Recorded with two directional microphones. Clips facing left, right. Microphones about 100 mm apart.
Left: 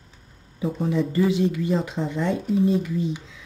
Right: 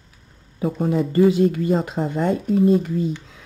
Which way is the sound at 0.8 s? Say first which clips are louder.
Right 5 dB; 45° right (ahead or behind).